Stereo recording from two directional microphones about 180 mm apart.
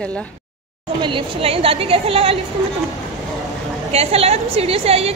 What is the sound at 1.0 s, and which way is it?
A woman's voice, 30° right (ahead or behind).